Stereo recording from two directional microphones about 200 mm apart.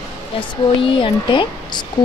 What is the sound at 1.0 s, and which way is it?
Speech, 25° left (ahead or behind).